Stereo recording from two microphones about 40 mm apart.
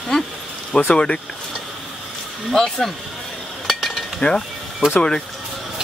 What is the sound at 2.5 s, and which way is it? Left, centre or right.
Speech, centre.